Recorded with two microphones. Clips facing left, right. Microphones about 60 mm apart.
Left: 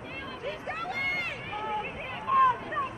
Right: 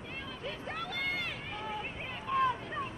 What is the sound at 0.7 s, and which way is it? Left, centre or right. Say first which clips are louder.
Run: left 4 dB; left.